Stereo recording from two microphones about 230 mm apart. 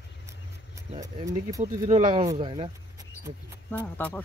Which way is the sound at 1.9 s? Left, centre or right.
Right.